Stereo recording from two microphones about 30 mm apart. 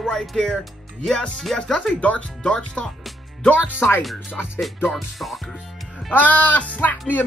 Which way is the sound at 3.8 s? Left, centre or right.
Left.